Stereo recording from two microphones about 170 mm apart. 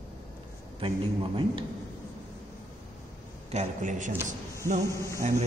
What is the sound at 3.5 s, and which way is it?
A man's voice, 45° right (ahead or behind).